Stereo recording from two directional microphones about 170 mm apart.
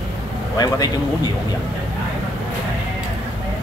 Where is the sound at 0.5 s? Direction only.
25° left (ahead or behind).